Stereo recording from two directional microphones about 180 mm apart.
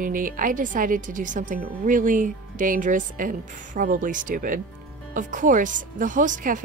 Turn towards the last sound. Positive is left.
turn(degrees=-45)  # may be behind; listen again after turning